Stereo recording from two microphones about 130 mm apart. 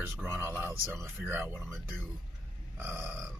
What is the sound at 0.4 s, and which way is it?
Speech, 20° right (ahead or behind).